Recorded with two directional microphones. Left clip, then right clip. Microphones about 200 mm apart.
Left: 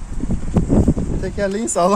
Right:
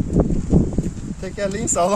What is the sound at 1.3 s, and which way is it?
Speech, 20° right (ahead or behind).